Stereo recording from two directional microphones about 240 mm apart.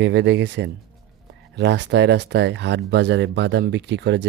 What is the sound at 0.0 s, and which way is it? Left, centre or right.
Speech, right.